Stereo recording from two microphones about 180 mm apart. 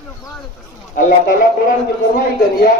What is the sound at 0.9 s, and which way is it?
Speech, 50° left (ahead or behind).